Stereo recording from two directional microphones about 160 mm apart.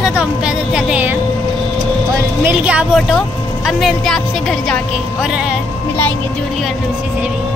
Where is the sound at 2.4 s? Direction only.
10° right (ahead or behind).